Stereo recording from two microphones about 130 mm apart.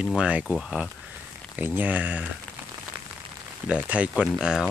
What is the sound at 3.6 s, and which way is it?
Speech, 10° right (ahead or behind).